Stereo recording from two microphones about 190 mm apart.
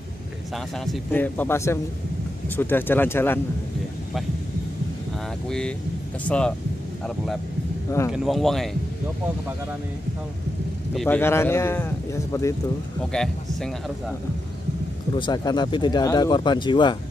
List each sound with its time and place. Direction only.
0.7 s a man's voice: centre (ahead or behind)
5.5 s a man's voice: 5° left (ahead or behind)
8.1 s a man's voice: centre (ahead or behind)
11.0 s a man's voice: 10° left (ahead or behind)
13.1 s a man's voice: 5° left (ahead or behind)
15.1 s speech: 25° left (ahead or behind)